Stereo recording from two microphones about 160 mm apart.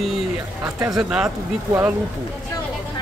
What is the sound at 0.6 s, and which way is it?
Speech, 20° right (ahead or behind).